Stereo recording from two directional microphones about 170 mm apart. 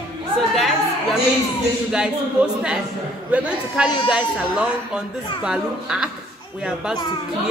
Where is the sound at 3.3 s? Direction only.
5° right (ahead or behind).